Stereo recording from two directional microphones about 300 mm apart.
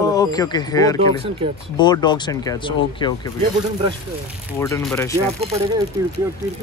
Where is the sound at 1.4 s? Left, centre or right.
Centre.